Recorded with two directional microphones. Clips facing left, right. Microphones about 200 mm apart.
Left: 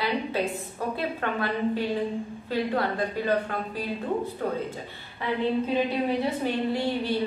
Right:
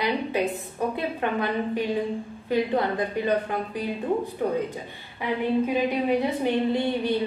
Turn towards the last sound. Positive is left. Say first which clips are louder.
# right 2 dB
turn(degrees=-20)  # may be behind; listen again after turning